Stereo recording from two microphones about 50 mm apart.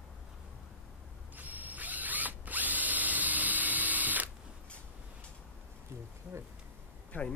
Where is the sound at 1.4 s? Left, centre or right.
Right.